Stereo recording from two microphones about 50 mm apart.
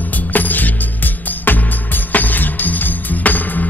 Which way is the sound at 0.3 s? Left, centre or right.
Left.